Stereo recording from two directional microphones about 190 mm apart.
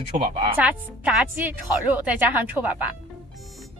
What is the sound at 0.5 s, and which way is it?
A woman's voice, 5° right (ahead or behind).